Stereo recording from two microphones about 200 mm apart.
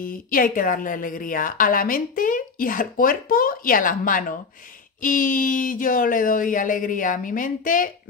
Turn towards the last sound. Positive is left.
turn(degrees=45)  # may be behind; listen again after turning